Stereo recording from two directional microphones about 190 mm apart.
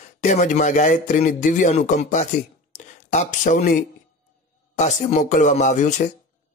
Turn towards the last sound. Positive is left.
turn(degrees=40)  # may be behind; listen again after turning